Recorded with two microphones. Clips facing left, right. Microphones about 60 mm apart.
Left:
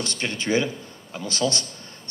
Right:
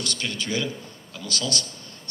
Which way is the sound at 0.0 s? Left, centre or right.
Left.